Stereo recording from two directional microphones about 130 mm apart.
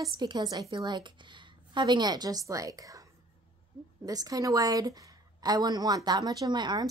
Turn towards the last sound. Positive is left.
turn(degrees=-35)  # may be behind; listen again after turning